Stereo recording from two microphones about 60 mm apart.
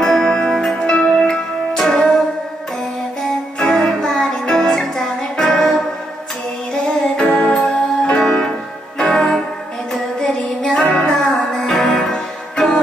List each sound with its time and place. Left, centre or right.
0.0 s music: centre
3.5 s music: centre
6.9 s music: centre
10.2 s female singing: centre
11.0 s music: centre